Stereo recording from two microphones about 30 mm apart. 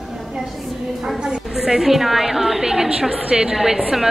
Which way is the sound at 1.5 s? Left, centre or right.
Centre.